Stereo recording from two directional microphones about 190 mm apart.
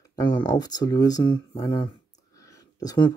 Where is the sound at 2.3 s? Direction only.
20° left (ahead or behind).